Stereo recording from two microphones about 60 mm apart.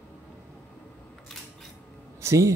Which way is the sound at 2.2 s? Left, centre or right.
Right.